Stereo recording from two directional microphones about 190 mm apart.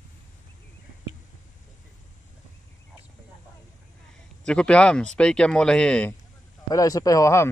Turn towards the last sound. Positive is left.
turn(degrees=15)  # may be behind; listen again after turning